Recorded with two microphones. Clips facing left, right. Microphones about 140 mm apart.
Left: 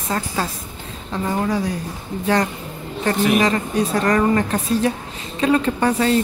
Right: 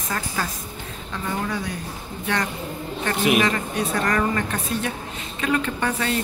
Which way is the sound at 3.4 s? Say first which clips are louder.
Left 4 dB; 35° left (ahead or behind).